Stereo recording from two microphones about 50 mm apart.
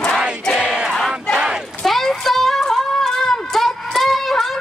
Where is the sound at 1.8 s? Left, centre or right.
Centre.